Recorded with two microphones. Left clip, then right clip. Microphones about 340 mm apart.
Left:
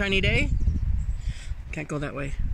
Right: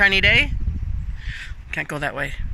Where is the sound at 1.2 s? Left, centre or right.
Centre.